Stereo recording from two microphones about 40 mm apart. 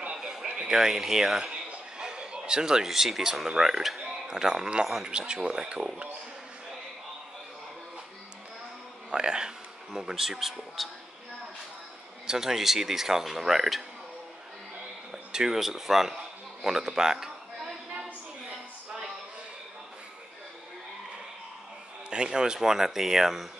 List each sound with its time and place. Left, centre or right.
0.1 s a sound: centre
2.0 s speech: right; by 4.1 s centre
4.3 s speech: centre
4.8 s speech: centre
5.1 s speech: right
9.1 s speech: centre
12.3 s speech: centre
15.0 s speech: centre
16.6 s a sound: centre
22.1 s speech: centre